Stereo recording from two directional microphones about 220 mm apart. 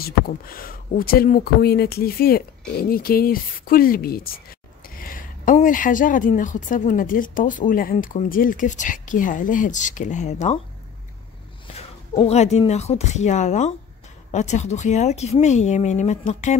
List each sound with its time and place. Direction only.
0.0 s speech: 40° left (ahead or behind)
12.1 s speech: 30° left (ahead or behind)